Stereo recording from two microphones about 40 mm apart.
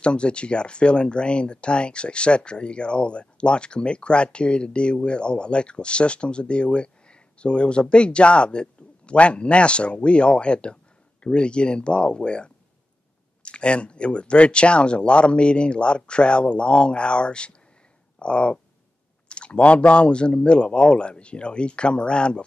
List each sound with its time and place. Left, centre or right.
0.0 s speech: left